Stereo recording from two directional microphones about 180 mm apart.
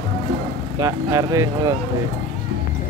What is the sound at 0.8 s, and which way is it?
Speech, 15° right (ahead or behind).